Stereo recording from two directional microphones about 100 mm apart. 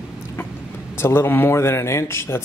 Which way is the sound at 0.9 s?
25° left (ahead or behind).